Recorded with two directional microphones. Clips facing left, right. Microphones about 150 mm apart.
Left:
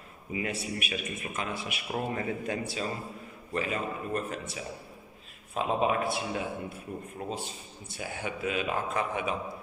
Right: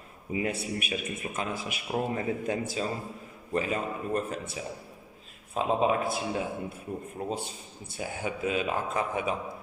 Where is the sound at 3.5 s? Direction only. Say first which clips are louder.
Right 2 dB; 35° right (ahead or behind).